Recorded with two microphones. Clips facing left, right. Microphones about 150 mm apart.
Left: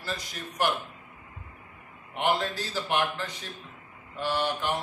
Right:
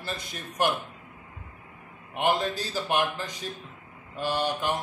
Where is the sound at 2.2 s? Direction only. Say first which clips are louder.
Right 2 dB; 15° right (ahead or behind).